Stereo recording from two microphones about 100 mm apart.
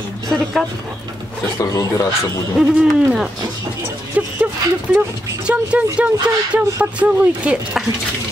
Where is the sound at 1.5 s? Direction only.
35° left (ahead or behind).